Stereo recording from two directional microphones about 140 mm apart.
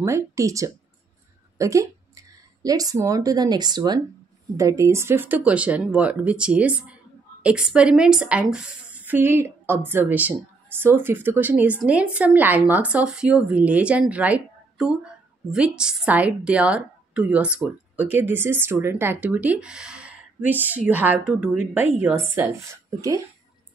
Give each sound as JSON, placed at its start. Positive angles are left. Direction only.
{"t": 0.0, "sound": "a woman's voice", "side_deg": -20}